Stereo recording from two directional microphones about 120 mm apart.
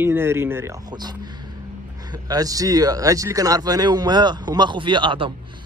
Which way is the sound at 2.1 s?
30° right (ahead or behind).